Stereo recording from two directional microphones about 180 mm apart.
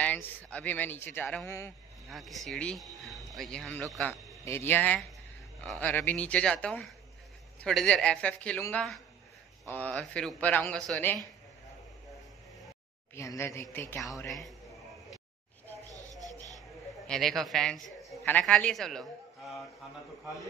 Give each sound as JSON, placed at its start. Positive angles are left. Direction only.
{"t": 0.0, "sound": "speech", "side_deg": 10}
{"t": 2.0, "sound": "speech", "side_deg": 0}
{"t": 13.1, "sound": "speech", "side_deg": 15}
{"t": 15.9, "sound": "a sound", "side_deg": -20}
{"t": 17.1, "sound": "speech", "side_deg": 0}